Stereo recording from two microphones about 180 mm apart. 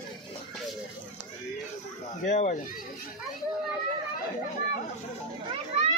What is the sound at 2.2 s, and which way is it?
Speech, 40° left (ahead or behind).